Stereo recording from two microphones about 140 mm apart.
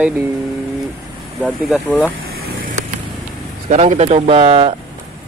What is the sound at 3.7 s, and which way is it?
Speech, 55° right (ahead or behind).